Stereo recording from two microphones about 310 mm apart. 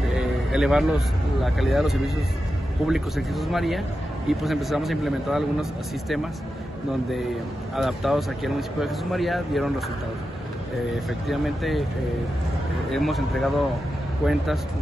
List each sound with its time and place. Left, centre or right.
0.0 s speech: centre
7.7 s speech: centre
11.1 s speech: centre
12.9 s speech: centre